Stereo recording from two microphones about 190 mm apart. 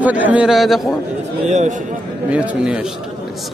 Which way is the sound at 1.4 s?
40° right (ahead or behind).